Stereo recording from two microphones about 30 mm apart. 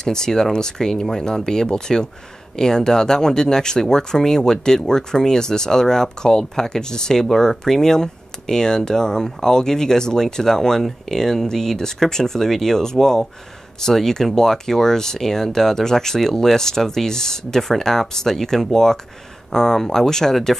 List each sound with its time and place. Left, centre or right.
0.0 s speech: centre